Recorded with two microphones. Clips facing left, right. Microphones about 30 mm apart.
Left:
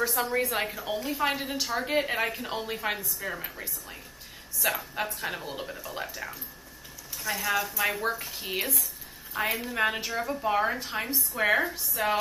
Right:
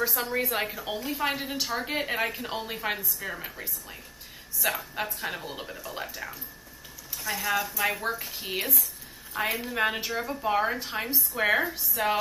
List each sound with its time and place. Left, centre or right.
0.0 s a woman's voice: centre